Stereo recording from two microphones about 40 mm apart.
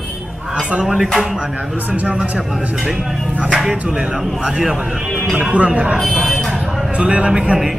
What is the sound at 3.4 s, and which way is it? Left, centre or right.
A man's voice, right.